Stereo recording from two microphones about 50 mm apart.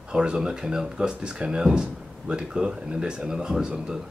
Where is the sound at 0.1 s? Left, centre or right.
Centre.